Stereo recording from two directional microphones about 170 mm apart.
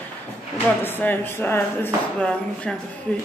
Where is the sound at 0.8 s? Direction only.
10° left (ahead or behind).